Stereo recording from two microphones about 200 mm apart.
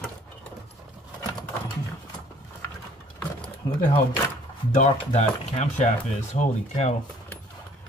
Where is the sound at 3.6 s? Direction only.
20° left (ahead or behind).